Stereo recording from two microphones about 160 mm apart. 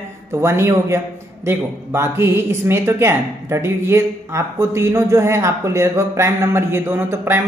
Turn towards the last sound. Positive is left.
turn(degrees=-15)  # may be behind; listen again after turning